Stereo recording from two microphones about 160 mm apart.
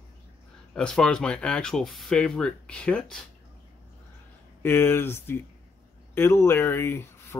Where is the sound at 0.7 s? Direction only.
5° left (ahead or behind).